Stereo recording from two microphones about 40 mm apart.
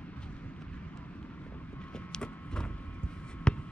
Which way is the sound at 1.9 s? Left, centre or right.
Left.